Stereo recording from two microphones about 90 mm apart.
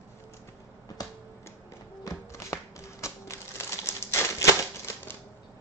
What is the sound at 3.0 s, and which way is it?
Typewriter, 30° left (ahead or behind).